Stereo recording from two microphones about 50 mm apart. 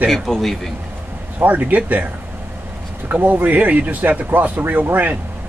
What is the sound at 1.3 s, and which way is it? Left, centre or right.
Speech, right.